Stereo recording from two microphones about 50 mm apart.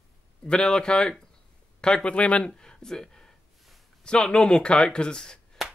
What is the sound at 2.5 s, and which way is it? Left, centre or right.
Speech, centre.